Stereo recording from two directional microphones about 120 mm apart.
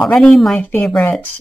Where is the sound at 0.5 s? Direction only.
15° left (ahead or behind).